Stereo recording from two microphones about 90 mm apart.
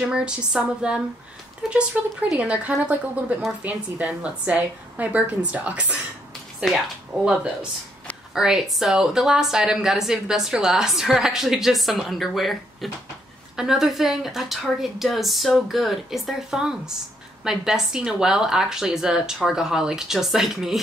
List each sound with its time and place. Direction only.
0.0 s a woman's voice: 10° right (ahead or behind)
2.2 s a woman's voice: 10° right (ahead or behind)
8.4 s speech: 5° right (ahead or behind)